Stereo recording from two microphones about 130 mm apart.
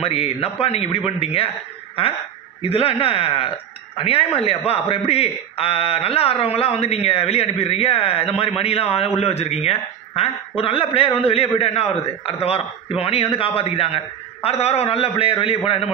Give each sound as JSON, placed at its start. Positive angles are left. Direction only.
{"t": 0.0, "sound": "a man's voice", "side_deg": 50}
{"t": 2.6, "sound": "a man's voice", "side_deg": 45}